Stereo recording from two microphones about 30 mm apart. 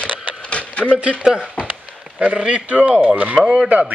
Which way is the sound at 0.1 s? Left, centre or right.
Right.